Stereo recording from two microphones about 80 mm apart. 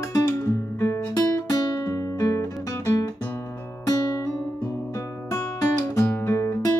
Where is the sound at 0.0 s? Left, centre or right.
Left.